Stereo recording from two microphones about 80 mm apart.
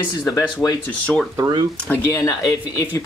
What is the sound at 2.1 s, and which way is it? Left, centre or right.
Speech, left.